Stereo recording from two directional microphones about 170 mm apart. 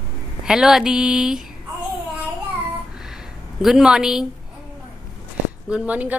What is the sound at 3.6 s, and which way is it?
Speech, 5° right (ahead or behind).